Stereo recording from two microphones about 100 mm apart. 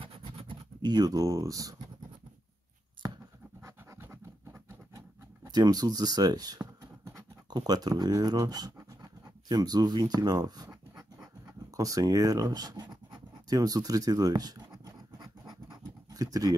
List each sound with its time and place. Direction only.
0.0 s scratch: 60° right (ahead or behind); by 1.8 s 35° right (ahead or behind)
3.6 s scratch: 25° right (ahead or behind)
5.5 s speech: 40° right (ahead or behind)
11.7 s writing: 35° right (ahead or behind)